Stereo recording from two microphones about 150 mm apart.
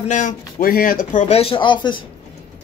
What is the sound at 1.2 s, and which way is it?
Speech, 40° left (ahead or behind).